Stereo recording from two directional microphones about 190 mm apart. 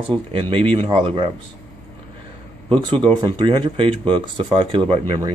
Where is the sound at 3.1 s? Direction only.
25° right (ahead or behind).